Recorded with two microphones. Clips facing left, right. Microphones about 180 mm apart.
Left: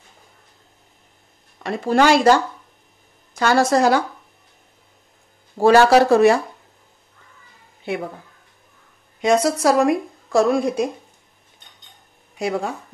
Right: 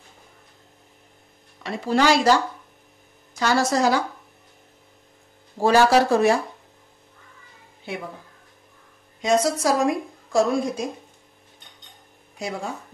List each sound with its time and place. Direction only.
1.6 s a woman's voice: 55° left (ahead or behind)
3.3 s a woman's voice: 55° left (ahead or behind)
5.6 s a man's voice: 65° left (ahead or behind)
9.2 s a woman's voice: 65° left (ahead or behind)
12.4 s a woman's voice: 60° left (ahead or behind)